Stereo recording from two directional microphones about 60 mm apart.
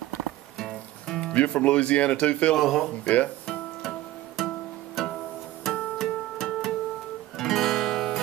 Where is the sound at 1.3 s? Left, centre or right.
Left.